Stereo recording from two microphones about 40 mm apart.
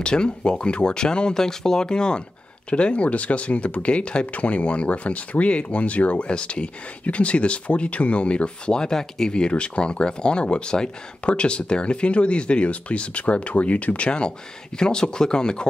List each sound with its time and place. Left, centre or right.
0.0 s speech: left